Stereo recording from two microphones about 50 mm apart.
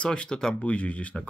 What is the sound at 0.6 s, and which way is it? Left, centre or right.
Speech, left.